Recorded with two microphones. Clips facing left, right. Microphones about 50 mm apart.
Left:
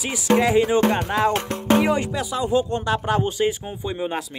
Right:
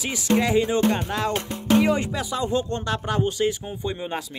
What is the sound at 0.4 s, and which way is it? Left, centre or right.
Speech, centre.